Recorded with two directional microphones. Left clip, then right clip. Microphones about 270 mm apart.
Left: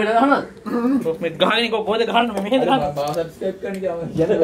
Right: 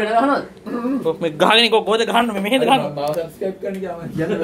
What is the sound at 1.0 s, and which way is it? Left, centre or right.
A man's voice, right.